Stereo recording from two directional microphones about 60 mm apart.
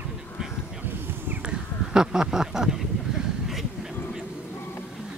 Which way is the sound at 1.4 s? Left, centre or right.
Centre.